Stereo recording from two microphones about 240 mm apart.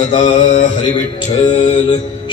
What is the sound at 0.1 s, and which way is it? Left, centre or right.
Mantra, left.